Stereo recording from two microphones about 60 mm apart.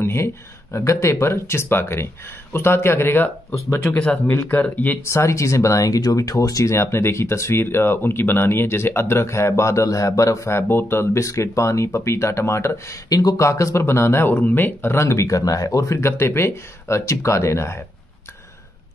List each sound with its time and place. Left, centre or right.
0.0 s a sound: left
0.7 s speech: left
3.8 s speech: left
5.1 s speech: left
6.7 s speech: left
11.2 s speech: left
13.1 s speech: left